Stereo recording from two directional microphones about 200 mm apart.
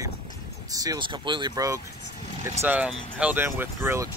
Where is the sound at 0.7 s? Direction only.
20° right (ahead or behind).